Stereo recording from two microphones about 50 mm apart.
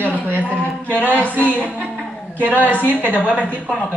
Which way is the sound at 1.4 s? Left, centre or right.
Left.